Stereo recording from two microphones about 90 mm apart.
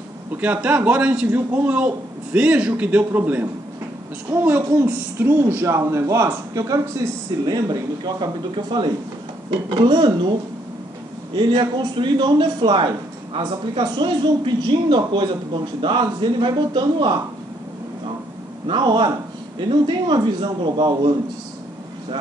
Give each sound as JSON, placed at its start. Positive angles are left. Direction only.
{"t": 0.3, "sound": "a man's voice", "side_deg": -15}
{"t": 11.3, "sound": "a man's voice", "side_deg": -60}
{"t": 18.7, "sound": "a man's voice", "side_deg": -60}